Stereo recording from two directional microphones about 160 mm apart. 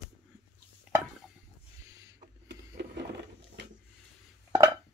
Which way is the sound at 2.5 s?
90° right.